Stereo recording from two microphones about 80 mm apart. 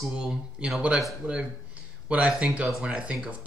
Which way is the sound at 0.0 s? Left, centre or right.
Centre.